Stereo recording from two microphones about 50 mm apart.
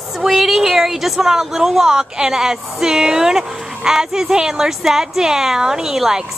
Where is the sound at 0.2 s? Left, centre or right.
Centre.